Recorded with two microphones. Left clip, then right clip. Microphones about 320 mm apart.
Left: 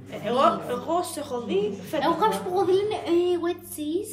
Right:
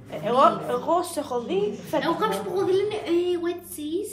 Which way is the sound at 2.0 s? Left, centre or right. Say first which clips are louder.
Left 5 dB; centre.